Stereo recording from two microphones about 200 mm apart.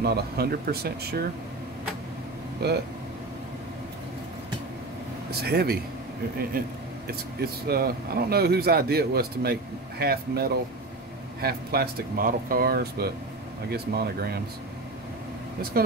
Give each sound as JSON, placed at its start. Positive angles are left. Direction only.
{"t": 0.0, "sound": "speech", "side_deg": -50}
{"t": 2.6, "sound": "speech", "side_deg": -55}
{"t": 5.4, "sound": "speech", "side_deg": -50}